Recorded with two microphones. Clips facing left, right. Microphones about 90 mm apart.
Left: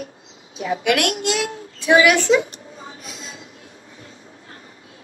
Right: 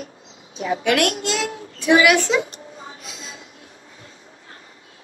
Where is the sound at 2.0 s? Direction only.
35° left (ahead or behind).